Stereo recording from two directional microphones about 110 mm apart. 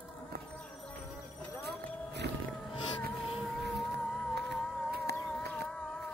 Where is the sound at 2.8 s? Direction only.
50° left (ahead or behind).